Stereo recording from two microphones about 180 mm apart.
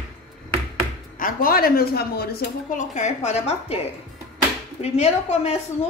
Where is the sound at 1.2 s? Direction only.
50° left (ahead or behind); by 3.8 s 35° left (ahead or behind).